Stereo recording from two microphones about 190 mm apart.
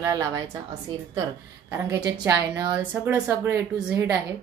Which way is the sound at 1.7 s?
15° right (ahead or behind).